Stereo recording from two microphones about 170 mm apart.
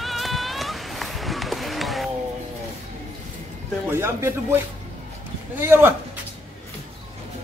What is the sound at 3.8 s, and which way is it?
Speech, 15° right (ahead or behind).